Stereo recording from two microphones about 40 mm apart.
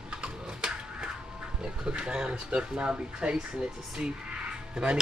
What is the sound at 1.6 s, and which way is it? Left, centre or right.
Speech, right.